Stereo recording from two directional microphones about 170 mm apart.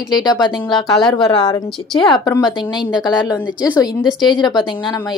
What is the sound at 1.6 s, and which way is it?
Speech, centre (ahead or behind).